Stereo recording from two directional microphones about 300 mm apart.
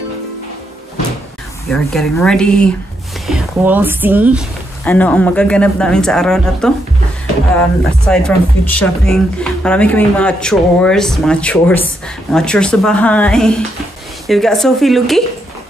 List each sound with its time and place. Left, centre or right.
1.7 s speech: centre
4.8 s speech: centre
8.1 s speech: centre